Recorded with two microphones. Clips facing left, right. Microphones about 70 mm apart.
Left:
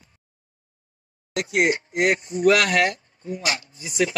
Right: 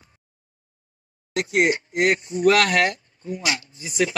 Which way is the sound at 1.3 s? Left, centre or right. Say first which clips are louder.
Right 1 dB; right.